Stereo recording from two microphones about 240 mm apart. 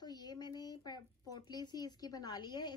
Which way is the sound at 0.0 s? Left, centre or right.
Centre.